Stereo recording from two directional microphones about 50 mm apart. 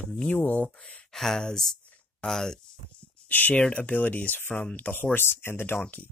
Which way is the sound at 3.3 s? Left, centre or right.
Left.